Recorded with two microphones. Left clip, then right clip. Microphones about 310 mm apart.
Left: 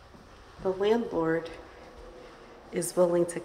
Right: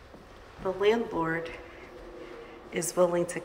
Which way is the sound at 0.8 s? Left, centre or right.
Centre.